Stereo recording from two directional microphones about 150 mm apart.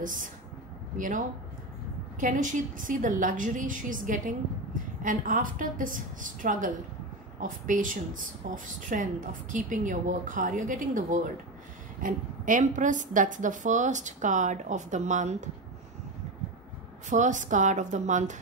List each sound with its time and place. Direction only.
0.0 s a woman's voice: 60° right (ahead or behind)
17.1 s a woman's voice: 55° right (ahead or behind)